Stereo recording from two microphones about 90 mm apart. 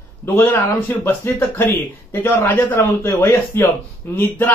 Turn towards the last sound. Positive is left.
turn(degrees=25)  # may be behind; listen again after turning